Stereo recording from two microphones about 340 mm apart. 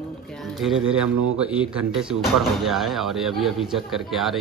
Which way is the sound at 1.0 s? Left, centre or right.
Right.